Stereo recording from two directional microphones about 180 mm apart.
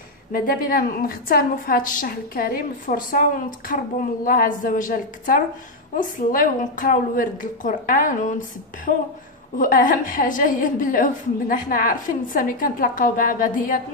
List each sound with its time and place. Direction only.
0.3 s a woman's voice: 50° left (ahead or behind)